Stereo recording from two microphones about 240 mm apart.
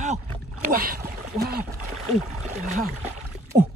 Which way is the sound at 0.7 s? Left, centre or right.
Right.